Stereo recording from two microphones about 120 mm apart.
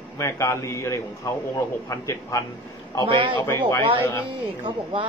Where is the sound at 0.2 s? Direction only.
25° left (ahead or behind).